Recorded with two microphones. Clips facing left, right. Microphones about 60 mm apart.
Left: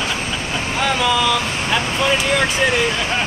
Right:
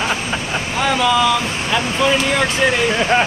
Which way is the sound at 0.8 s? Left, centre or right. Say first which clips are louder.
Right 3 dB; centre.